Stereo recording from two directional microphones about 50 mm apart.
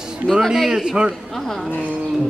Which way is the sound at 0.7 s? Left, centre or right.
Centre.